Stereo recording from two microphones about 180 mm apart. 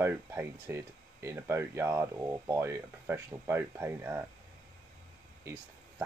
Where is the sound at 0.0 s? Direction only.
15° right (ahead or behind).